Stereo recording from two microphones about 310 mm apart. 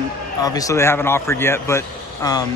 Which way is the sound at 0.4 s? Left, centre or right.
Centre.